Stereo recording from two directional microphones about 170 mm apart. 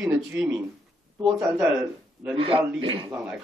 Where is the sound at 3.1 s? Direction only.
5° right (ahead or behind).